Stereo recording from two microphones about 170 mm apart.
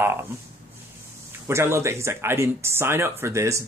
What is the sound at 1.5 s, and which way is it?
Speech, 15° right (ahead or behind).